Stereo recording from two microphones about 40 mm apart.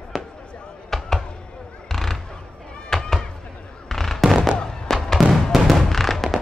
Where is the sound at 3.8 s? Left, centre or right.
Centre.